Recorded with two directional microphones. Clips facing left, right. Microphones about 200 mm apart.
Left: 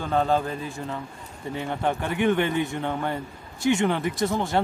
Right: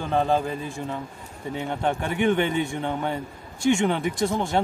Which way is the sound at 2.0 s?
10° right (ahead or behind).